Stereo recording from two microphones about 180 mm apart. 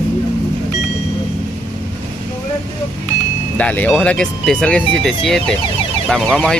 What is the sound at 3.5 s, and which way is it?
Speech, 10° left (ahead or behind).